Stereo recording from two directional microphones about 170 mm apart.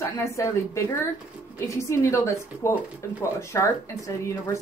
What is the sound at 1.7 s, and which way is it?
A woman's voice, 15° left (ahead or behind).